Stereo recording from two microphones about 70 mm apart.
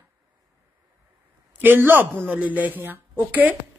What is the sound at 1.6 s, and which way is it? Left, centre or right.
Speech, right.